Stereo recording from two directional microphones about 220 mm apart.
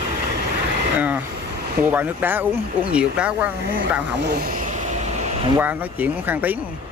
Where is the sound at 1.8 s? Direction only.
10° right (ahead or behind).